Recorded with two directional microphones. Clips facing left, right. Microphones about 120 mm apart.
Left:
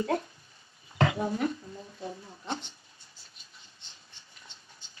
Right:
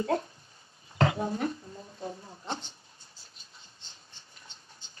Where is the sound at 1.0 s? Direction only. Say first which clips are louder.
Even; 30° right (ahead or behind).